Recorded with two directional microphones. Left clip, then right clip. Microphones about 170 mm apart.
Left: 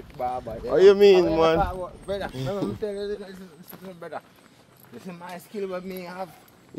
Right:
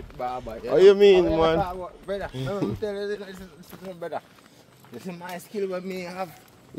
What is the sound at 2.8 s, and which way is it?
Speech, 30° right (ahead or behind).